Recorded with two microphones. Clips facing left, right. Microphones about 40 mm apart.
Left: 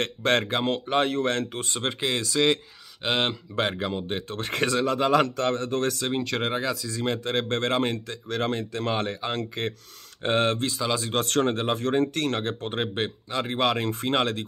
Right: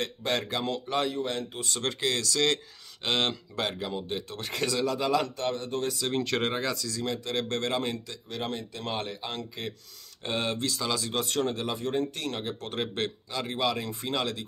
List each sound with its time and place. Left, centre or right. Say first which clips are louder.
0.0 s speech: left 6 dB; left
1.1 s speech: left 6 dB; left
1.6 s speech: left 2 dB; left
3.5 s speech: left 5 dB; left
5.1 s speech: left 5 dB; left
6.2 s speech: left 2 dB; centre
6.9 s speech: left 4 dB; left
8.3 s speech: left 7 dB; left
10.2 s speech: left 7 dB; left
10.6 s speech: left 3 dB; left
11.1 s speech: left 5 dB; left
11.8 s speech: left 6 dB; left
12.5 s speech: left 4 dB; left
13.6 s speech: left 5 dB; left